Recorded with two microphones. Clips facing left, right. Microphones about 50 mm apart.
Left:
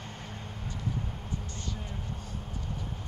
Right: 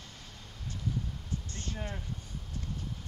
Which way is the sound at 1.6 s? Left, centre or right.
Right.